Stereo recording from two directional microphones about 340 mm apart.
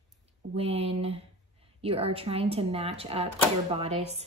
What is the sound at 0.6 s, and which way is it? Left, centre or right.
Speech, centre.